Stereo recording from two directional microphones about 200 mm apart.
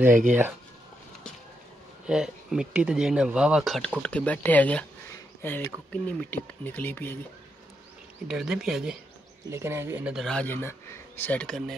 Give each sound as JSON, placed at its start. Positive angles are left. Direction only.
{"t": 0.1, "sound": "speech", "side_deg": -40}
{"t": 2.0, "sound": "speech", "side_deg": -5}
{"t": 8.3, "sound": "speech", "side_deg": 0}